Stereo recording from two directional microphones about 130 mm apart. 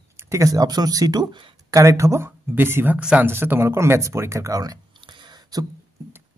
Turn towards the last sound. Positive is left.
turn(degrees=-30)  # may be behind; listen again after turning